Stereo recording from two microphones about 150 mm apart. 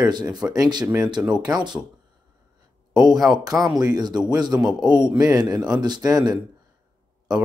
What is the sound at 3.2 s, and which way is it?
Speech, 5° right (ahead or behind).